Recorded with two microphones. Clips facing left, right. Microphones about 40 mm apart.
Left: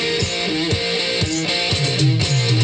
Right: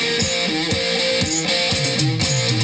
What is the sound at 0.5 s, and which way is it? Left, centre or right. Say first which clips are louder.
Music: even; left.